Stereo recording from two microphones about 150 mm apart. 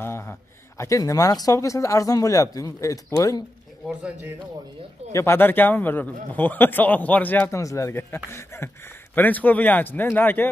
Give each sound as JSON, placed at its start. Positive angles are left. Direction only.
{"t": 0.0, "sound": "speech", "side_deg": 15}
{"t": 5.1, "sound": "a man's voice", "side_deg": 15}